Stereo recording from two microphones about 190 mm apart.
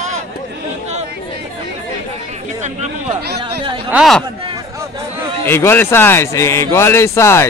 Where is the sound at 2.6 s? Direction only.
35° right (ahead or behind).